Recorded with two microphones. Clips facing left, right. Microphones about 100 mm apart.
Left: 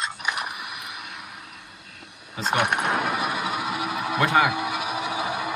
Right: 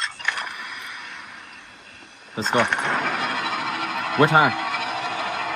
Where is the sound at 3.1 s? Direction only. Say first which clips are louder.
Even; 5° left (ahead or behind).